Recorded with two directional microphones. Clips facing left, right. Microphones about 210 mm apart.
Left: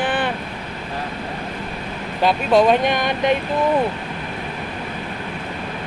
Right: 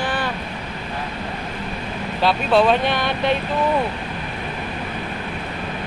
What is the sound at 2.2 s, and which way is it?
Speech, 15° left (ahead or behind).